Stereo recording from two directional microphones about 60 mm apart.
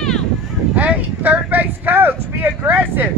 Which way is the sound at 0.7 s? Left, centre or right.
Right.